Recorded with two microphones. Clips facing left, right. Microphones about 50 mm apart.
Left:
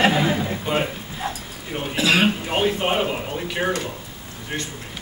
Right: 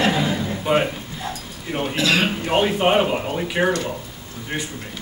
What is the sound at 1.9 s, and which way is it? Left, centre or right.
Speech, centre.